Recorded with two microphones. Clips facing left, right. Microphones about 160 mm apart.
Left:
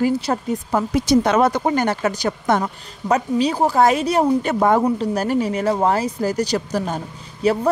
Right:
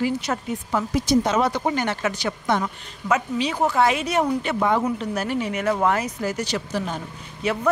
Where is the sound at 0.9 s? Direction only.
65° left (ahead or behind).